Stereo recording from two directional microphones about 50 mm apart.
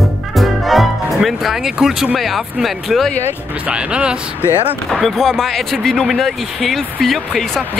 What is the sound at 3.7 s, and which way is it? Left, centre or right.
Speech, right.